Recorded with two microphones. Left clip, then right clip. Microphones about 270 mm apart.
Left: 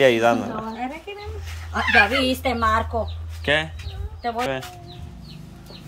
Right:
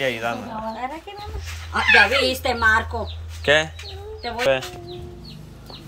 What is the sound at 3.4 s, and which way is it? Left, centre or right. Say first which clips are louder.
Chicken: right 4 dB; centre.